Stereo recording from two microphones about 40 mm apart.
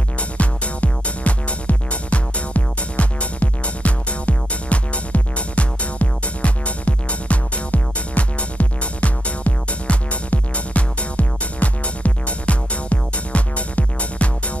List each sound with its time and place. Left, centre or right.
0.2 s music: left